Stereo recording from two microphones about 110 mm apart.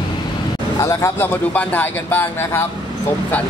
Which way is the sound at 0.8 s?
25° left (ahead or behind).